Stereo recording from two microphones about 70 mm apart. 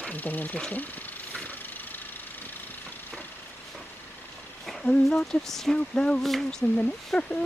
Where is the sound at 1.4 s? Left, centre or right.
Left.